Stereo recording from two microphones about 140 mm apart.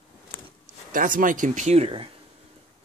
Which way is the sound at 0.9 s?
75° right (ahead or behind).